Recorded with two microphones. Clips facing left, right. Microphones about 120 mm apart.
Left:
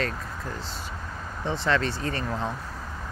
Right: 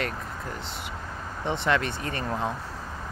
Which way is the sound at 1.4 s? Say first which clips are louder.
Even; 20° right (ahead or behind).